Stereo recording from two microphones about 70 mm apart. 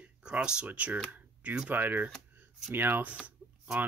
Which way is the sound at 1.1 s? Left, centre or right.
Centre.